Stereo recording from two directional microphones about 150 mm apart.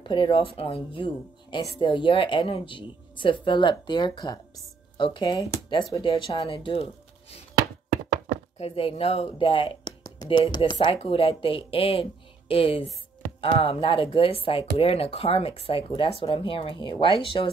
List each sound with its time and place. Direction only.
0.0 s speech: 35° left (ahead or behind)
8.5 s speech: 40° left (ahead or behind)